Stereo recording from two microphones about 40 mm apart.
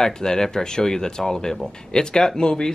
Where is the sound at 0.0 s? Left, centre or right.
Centre.